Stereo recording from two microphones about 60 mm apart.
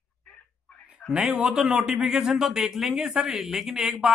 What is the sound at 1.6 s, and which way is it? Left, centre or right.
A man's voice, centre.